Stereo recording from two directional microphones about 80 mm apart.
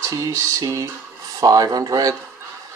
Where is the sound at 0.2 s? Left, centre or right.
Right.